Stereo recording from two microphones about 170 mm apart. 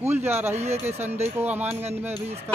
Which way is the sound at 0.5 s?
40° right (ahead or behind).